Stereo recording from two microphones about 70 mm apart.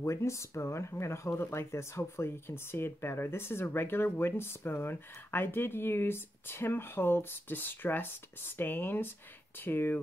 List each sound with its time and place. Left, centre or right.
0.0 s speech: left